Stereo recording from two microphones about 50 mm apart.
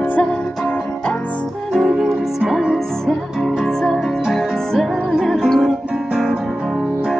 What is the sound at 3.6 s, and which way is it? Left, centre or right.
Music, centre.